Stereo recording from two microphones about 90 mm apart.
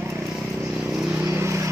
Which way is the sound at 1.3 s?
30° right (ahead or behind).